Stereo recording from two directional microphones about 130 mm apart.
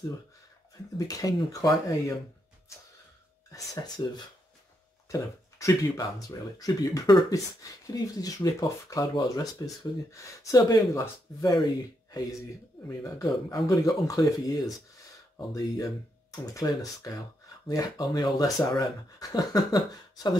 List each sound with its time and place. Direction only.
0.9 s speech: 25° left (ahead or behind)
3.5 s speech: 30° left (ahead or behind)
5.1 s speech: 25° left (ahead or behind)